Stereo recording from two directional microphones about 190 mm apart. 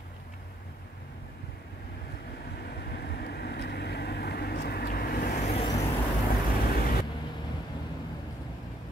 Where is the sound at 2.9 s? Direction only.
55° left (ahead or behind); by 5.7 s 35° left (ahead or behind).